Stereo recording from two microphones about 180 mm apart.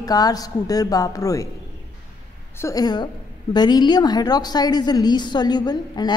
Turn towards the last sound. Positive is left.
turn(degrees=25)  # may be behind; listen again after turning